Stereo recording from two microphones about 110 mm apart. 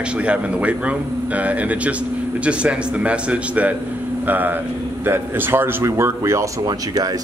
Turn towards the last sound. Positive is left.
turn(degrees=-35)  # may be behind; listen again after turning